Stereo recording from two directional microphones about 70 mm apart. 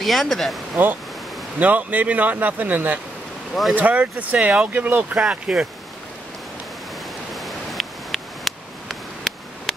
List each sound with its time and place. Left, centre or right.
0.0 s speech: centre
1.6 s speech: right
5.3 s speech: centre
7.3 s a sound: centre